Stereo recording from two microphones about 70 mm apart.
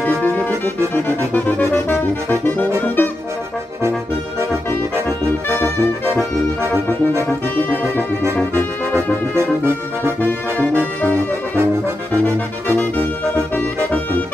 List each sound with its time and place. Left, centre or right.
0.0 s music: left
0.9 s accordion: left
1.6 s music: left
8.5 s brass instrument: right